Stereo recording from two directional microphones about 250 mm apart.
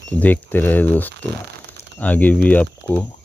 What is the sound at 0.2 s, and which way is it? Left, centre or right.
Speech, centre.